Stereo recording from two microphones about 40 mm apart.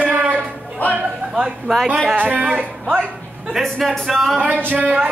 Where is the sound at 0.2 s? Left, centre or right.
Right.